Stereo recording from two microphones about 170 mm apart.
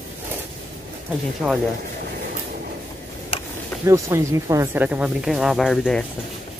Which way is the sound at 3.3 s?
30° left (ahead or behind).